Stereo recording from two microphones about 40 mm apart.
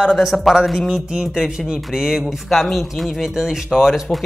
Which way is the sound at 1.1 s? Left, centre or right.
Centre.